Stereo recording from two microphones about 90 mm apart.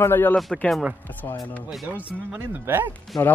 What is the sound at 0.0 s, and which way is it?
Speech, 25° left (ahead or behind).